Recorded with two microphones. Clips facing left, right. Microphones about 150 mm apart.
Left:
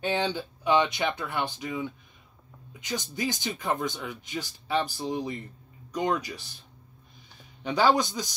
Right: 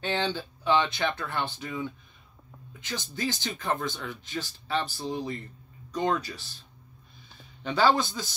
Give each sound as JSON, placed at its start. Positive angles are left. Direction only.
{"t": 0.0, "sound": "speech", "side_deg": 15}
{"t": 7.6, "sound": "speech", "side_deg": 15}